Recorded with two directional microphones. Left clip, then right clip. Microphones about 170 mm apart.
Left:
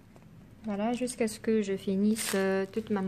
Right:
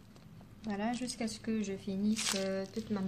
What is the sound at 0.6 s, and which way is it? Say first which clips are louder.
A woman's voice: left 6 dB; 55° left (ahead or behind).